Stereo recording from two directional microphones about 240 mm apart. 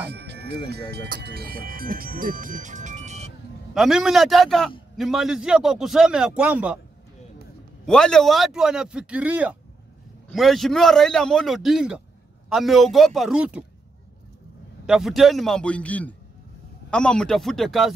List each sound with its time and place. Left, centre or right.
0.0 s music: right
0.7 s speech: right
3.7 s a man's voice: centre
7.8 s a man's voice: centre
14.9 s a man's voice: centre